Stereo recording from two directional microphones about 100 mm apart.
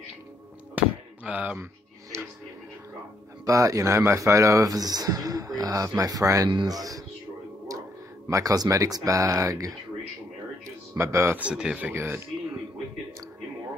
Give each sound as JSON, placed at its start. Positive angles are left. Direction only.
{"t": 1.2, "sound": "speech", "side_deg": -10}
{"t": 2.1, "sound": "music", "side_deg": -25}
{"t": 3.4, "sound": "speech", "side_deg": -35}
{"t": 8.3, "sound": "speech", "side_deg": -35}
{"t": 11.0, "sound": "speech", "side_deg": -25}
{"t": 11.3, "sound": "speech", "side_deg": -10}
{"t": 11.9, "sound": "speech", "side_deg": -25}